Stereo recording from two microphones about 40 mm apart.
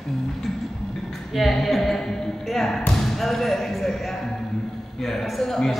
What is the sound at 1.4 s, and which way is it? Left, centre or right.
A woman's voice, centre.